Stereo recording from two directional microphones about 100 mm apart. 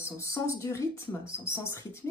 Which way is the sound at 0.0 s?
30° left (ahead or behind).